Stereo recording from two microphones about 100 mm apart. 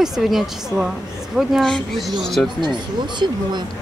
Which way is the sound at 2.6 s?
50° right (ahead or behind).